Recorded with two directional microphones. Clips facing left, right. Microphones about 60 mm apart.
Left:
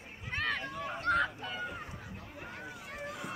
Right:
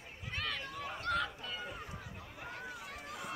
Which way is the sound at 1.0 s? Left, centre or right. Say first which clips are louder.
Left 6 dB; left.